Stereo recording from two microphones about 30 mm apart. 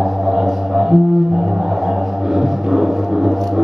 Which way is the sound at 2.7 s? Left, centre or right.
Centre.